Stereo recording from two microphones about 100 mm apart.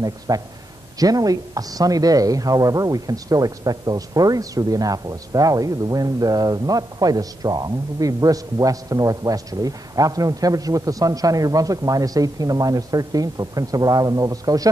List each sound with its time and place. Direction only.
0.3 s speech: 40° right (ahead or behind)